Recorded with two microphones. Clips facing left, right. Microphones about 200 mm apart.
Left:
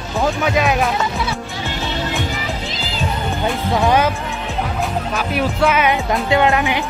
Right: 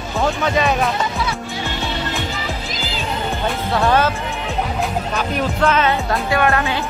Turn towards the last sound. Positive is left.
turn(degrees=15)  # may be behind; listen again after turning